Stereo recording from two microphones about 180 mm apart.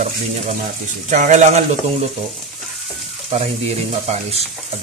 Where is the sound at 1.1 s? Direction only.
40° right (ahead or behind).